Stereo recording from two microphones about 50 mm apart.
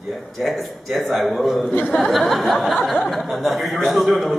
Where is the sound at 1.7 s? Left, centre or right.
Left.